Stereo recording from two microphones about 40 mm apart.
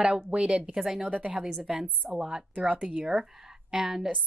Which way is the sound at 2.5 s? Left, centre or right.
Right.